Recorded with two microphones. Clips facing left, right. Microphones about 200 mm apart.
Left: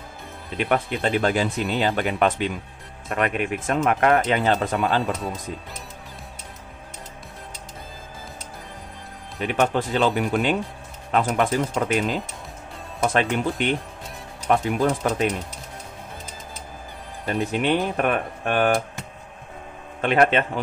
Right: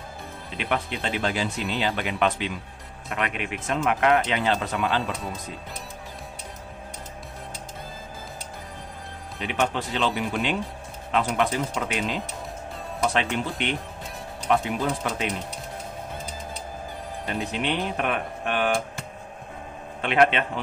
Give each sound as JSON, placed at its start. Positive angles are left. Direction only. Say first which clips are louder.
{"t": 0.6, "sound": "speech", "louder": "left 5 dB", "side_deg": 50}
{"t": 9.4, "sound": "speech", "louder": "left 4 dB", "side_deg": 50}
{"t": 17.3, "sound": "speech", "louder": "left 6 dB", "side_deg": 50}
{"t": 20.0, "sound": "speech", "louder": "left 2 dB", "side_deg": 45}